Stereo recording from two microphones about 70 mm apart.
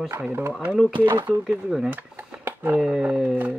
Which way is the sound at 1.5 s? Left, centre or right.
Centre.